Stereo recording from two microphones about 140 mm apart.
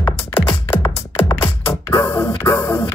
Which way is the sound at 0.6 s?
15° left (ahead or behind).